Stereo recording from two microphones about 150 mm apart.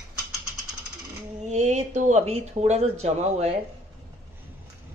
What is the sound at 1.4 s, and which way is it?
Speech, 50° right (ahead or behind).